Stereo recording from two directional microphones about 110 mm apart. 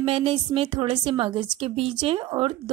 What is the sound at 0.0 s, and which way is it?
A woman's voice, 55° right (ahead or behind).